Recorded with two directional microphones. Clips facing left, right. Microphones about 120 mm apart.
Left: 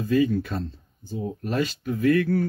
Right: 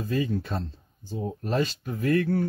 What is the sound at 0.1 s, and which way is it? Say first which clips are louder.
Speech: left 6 dB; 30° right (ahead or behind).